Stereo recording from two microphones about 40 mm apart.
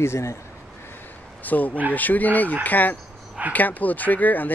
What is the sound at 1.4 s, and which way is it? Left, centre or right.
Speech, left.